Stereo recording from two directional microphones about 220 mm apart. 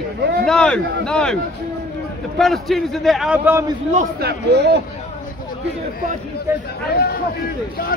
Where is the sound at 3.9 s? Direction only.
45° right (ahead or behind).